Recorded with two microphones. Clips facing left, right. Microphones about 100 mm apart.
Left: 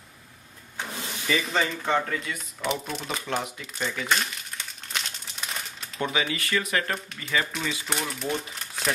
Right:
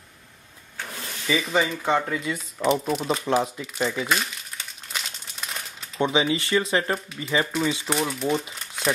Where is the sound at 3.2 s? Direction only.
30° right (ahead or behind).